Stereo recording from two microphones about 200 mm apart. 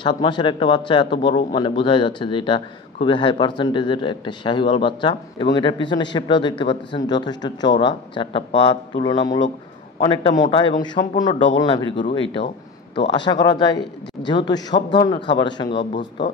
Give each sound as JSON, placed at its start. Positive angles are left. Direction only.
{"t": 0.0, "sound": "a man's voice", "side_deg": 25}